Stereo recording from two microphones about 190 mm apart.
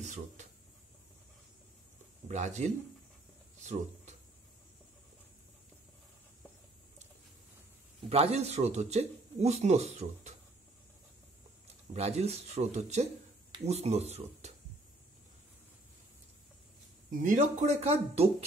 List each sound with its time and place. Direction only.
0.0 s a sound: 40° right (ahead or behind)
2.2 s speech: 40° right (ahead or behind)
3.5 s a sound: 35° right (ahead or behind)
8.1 s speech: 35° right (ahead or behind)
11.9 s speech: 35° right (ahead or behind)
17.2 s speech: 40° right (ahead or behind)